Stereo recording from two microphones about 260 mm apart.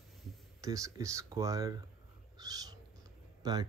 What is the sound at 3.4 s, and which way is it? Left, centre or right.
Speech, centre.